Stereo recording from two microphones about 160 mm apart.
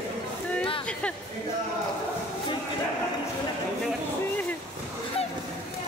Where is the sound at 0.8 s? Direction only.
5° left (ahead or behind).